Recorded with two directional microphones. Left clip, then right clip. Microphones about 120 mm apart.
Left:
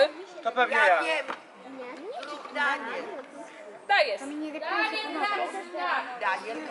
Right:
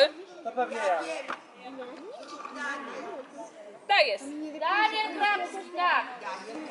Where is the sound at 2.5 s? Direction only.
20° left (ahead or behind).